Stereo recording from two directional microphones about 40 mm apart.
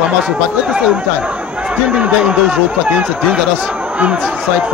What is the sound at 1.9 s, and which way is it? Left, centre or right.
Speech, right.